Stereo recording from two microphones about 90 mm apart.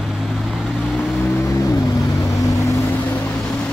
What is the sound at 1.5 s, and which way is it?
Vehicle, 40° left (ahead or behind).